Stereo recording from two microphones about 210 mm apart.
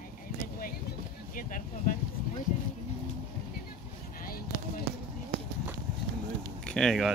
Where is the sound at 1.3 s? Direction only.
40° left (ahead or behind).